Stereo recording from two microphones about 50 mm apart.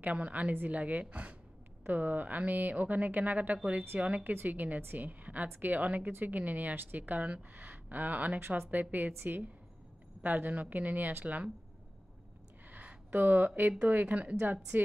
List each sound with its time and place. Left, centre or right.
0.0 s a woman's voice: right
8.4 s a woman's voice: right
12.7 s a sound: right
13.8 s a woman's voice: right
14.4 s a woman's voice: right